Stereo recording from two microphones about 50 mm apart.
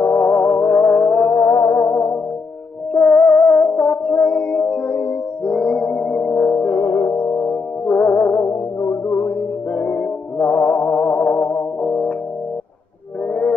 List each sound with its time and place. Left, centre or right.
0.0 s music: left
1.3 s music: left
2.9 s music: left
6.8 s music: left
9.0 s music: left
13.3 s a sound: left